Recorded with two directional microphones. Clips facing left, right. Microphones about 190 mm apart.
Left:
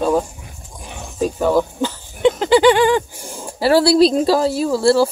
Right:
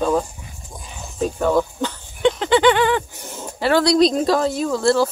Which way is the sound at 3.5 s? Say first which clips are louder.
Left 3 dB; 35° left (ahead or behind).